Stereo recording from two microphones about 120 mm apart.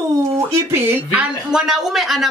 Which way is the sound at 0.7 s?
15° right (ahead or behind).